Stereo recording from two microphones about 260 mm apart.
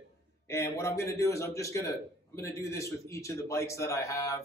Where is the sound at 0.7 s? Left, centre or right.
Centre.